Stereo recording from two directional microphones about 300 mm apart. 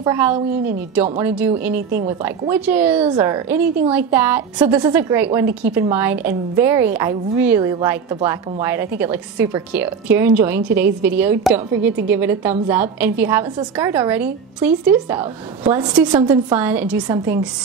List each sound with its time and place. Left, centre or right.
0.0 s a woman's voice: centre
1.8 s a woman's voice: right
2.5 s a woman's voice: centre